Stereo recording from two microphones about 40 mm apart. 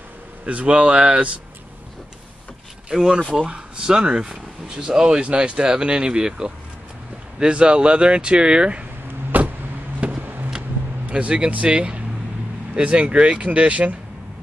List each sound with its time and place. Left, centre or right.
0.5 s speech: right
2.9 s speech: centre
9.0 s vehicle: right
9.9 s vehicle: right
10.2 s vehicle: right
11.1 s speech: right